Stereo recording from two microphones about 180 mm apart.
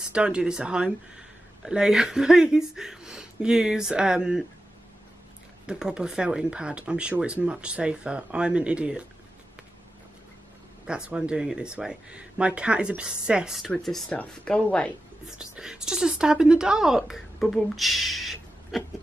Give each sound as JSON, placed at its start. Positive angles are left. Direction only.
{"t": 0.1, "sound": "speech", "side_deg": -5}
{"t": 5.7, "sound": "speech", "side_deg": -5}
{"t": 10.9, "sound": "speech", "side_deg": -5}
{"t": 15.3, "sound": "speech", "side_deg": -5}